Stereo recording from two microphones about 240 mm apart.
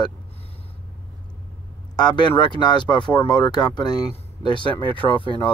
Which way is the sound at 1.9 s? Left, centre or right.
Centre.